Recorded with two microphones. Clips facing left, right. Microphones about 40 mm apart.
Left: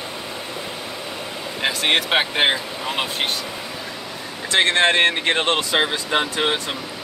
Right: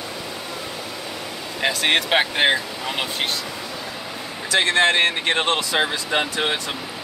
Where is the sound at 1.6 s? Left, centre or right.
Centre.